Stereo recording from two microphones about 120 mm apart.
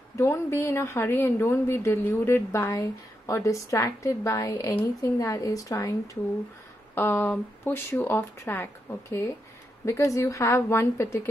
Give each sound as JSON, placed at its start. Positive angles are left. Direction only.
{"t": 0.2, "sound": "a woman's voice", "side_deg": 20}
{"t": 7.0, "sound": "speech", "side_deg": 15}
{"t": 9.8, "sound": "a woman's voice", "side_deg": 25}